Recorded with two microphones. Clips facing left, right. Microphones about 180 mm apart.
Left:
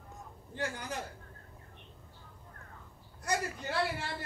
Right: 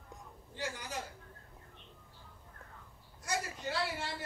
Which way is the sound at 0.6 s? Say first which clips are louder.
Left 4 dB; 60° left (ahead or behind).